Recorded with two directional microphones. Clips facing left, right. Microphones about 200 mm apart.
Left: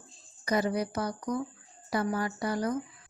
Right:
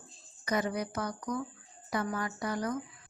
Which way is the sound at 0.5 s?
30° left (ahead or behind).